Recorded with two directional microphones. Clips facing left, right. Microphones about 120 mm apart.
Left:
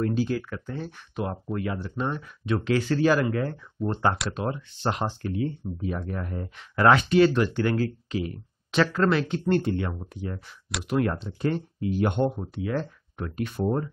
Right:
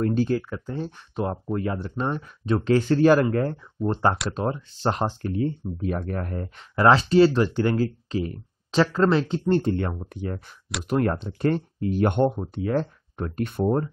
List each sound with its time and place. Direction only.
0.1 s speech: 50° right (ahead or behind)
0.4 s speech: 30° right (ahead or behind); by 6.5 s 50° right (ahead or behind)
6.7 s speech: 30° right (ahead or behind); by 12.4 s 60° right (ahead or behind)
12.6 s speech: 40° right (ahead or behind)